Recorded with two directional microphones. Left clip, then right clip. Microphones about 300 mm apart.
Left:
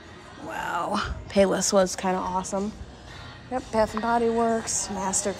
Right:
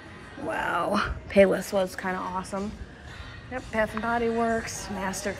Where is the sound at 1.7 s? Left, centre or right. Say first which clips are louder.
Left 5 dB; centre.